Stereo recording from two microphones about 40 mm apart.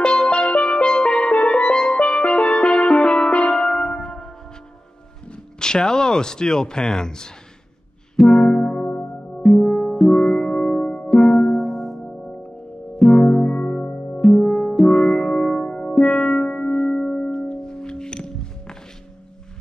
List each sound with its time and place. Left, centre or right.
0.0 s music: left
5.2 s speech: left
8.2 s music: left
9.4 s music: centre
13.5 s music: left
13.8 s music: left
14.1 s music: centre